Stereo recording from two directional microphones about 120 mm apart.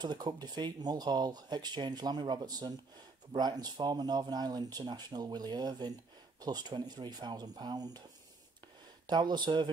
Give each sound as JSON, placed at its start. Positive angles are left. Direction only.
{"t": 0.0, "sound": "speech", "side_deg": -35}
{"t": 9.0, "sound": "speech", "side_deg": -35}